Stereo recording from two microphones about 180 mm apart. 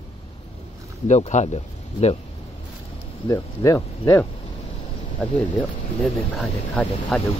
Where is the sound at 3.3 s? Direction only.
20° left (ahead or behind).